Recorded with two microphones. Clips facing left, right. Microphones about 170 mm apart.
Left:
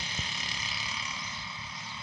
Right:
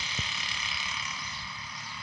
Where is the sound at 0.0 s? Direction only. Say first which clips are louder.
Even; 50° left (ahead or behind); by 1.1 s 30° left (ahead or behind).